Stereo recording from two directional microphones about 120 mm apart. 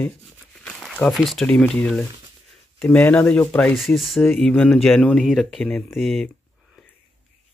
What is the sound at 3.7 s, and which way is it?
Speech, centre (ahead or behind).